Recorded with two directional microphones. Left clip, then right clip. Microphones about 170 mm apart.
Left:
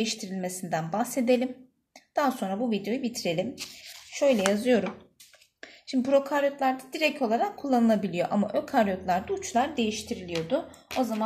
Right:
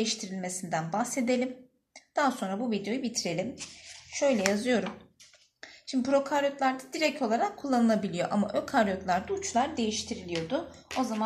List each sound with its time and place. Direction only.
0.0 s a woman's voice: 35° left (ahead or behind)